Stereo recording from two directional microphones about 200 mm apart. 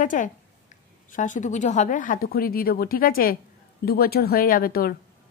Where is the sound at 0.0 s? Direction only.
40° left (ahead or behind).